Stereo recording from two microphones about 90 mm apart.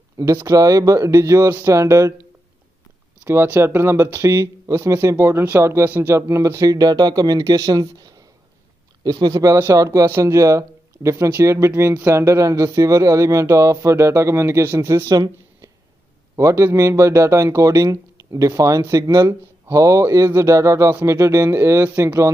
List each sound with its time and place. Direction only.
0.2 s speech: 40° right (ahead or behind)
3.3 s speech: 25° right (ahead or behind)
15.0 s speech: 45° right (ahead or behind)
16.3 s speech: 35° right (ahead or behind)